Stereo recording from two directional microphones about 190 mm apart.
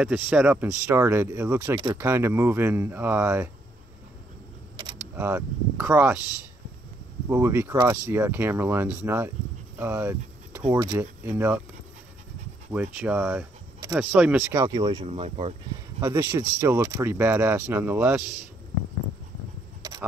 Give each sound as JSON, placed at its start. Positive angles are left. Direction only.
{"t": 0.0, "sound": "speech", "side_deg": -5}
{"t": 5.1, "sound": "speech", "side_deg": -10}
{"t": 7.2, "sound": "speech", "side_deg": -15}
{"t": 9.8, "sound": "a sound", "side_deg": -10}
{"t": 10.7, "sound": "speech", "side_deg": -15}
{"t": 12.7, "sound": "speech", "side_deg": -5}
{"t": 16.0, "sound": "speech", "side_deg": -15}
{"t": 19.8, "sound": "a sound", "side_deg": -20}